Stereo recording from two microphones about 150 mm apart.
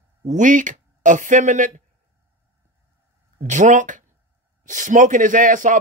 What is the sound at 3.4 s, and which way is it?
Speech, 55° right (ahead or behind).